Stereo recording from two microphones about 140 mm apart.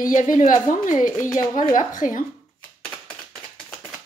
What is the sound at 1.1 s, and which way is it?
Speech, 25° left (ahead or behind).